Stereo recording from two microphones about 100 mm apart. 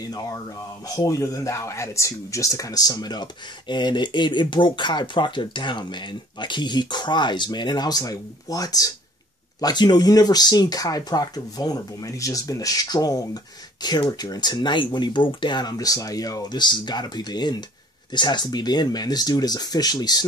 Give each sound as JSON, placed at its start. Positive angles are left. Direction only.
{"t": 0.0, "sound": "speech", "side_deg": 40}